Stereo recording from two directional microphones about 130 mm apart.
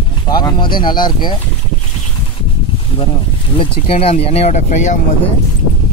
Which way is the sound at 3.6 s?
45° left (ahead or behind).